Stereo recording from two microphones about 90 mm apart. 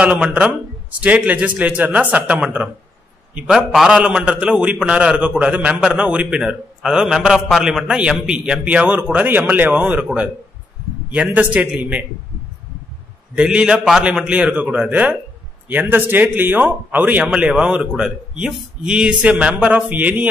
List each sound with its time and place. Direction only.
0.0 s speech: 15° right (ahead or behind)
11.1 s speech: 15° right (ahead or behind)
13.3 s speech: 10° right (ahead or behind)